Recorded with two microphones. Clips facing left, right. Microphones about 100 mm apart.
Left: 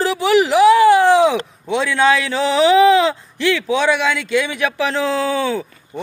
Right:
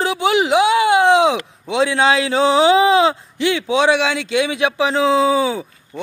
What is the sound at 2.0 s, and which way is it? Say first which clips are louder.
Speech: left 1 dB; 30° right (ahead or behind).